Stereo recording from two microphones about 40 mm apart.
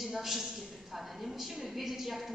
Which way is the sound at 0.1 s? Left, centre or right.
Centre.